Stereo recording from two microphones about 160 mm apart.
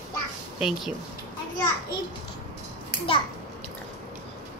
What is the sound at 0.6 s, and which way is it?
Speech, 5° right (ahead or behind).